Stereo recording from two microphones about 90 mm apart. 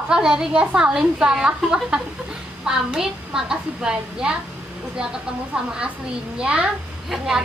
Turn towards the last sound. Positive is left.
turn(degrees=-10)  # may be behind; listen again after turning